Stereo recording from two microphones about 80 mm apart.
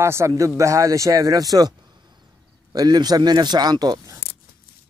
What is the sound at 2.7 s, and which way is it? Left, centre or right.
Speech, right.